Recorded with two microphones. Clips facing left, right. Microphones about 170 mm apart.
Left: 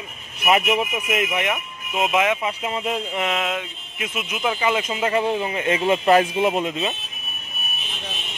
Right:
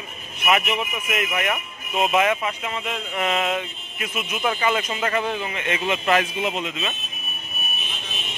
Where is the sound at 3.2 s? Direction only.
5° left (ahead or behind).